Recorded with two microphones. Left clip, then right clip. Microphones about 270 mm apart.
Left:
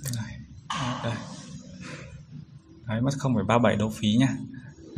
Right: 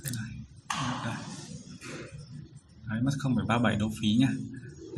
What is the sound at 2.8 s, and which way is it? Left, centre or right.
Speech, left.